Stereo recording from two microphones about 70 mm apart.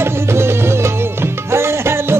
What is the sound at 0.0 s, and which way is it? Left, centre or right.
Music, right.